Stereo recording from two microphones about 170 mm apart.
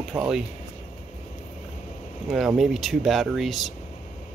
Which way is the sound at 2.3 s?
Centre (ahead or behind).